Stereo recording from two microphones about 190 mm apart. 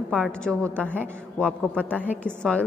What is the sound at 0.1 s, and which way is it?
A woman's voice, centre (ahead or behind).